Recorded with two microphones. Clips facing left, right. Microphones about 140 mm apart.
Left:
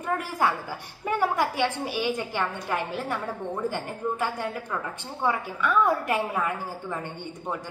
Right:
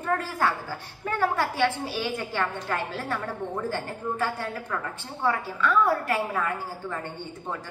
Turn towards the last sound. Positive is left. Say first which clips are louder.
# even
turn(degrees=15)  # may be behind; listen again after turning